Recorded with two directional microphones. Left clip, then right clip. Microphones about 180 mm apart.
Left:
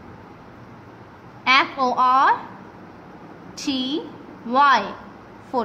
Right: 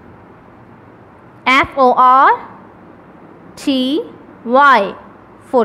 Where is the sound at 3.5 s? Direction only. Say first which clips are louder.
Right 9 dB; 35° right (ahead or behind).